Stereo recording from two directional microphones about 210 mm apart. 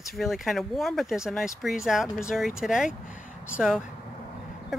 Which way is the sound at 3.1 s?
40° left (ahead or behind).